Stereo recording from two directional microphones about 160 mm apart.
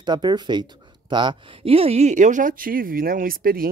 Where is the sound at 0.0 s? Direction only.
25° right (ahead or behind).